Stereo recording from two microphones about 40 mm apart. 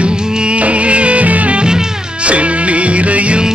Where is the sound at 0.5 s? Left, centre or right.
Right.